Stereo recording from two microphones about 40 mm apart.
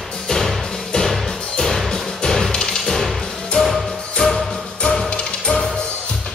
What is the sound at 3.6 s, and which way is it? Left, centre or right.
Music, centre.